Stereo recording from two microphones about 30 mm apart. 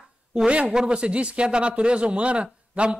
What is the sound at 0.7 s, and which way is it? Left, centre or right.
Speech, right.